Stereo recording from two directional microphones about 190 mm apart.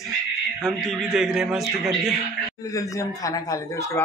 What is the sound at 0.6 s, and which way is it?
A man's voice, centre (ahead or behind).